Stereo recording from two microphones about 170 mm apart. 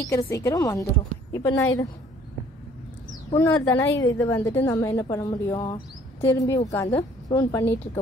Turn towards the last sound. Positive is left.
turn(degrees=15)  # may be behind; listen again after turning